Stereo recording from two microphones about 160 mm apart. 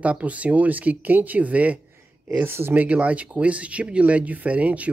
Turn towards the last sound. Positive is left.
turn(degrees=-10)  # may be behind; listen again after turning